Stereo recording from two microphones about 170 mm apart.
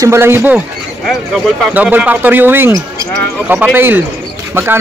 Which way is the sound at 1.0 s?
Centre (ahead or behind).